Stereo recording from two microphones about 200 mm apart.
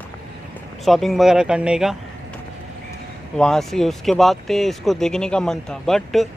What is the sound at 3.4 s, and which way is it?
Speech, centre (ahead or behind).